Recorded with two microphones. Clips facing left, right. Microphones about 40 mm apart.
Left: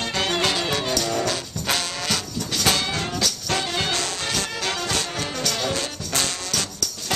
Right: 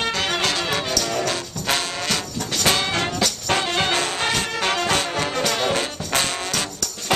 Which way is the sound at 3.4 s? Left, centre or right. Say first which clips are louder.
Right 5 dB; right.